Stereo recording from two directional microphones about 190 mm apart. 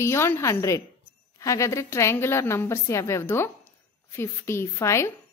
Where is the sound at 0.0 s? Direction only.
15° left (ahead or behind).